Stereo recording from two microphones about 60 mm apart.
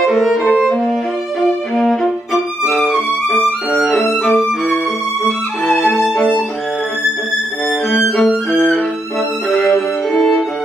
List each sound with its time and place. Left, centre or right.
0.0 s violin: centre
2.9 s music: centre
5.7 s violin: centre
7.9 s violin: centre
9.5 s music: centre
9.8 s violin: centre